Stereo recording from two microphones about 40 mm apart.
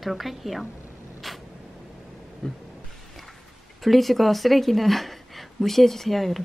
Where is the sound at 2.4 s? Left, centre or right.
Centre.